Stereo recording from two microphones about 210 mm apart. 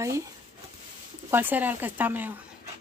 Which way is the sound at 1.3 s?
10° right (ahead or behind).